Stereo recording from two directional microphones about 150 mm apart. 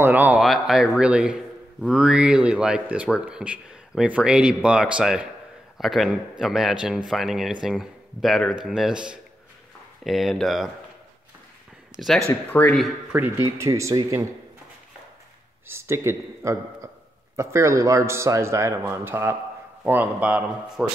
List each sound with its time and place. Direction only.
0.0 s a sound: 10° right (ahead or behind)
0.4 s speech: centre (ahead or behind)
12.3 s speech: 10° left (ahead or behind)
12.7 s speech: centre (ahead or behind)
13.2 s speech: 20° right (ahead or behind)
15.7 s a man's voice: 15° right (ahead or behind)